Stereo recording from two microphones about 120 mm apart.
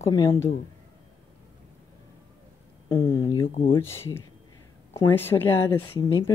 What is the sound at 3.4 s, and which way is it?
Speech, 50° left (ahead or behind).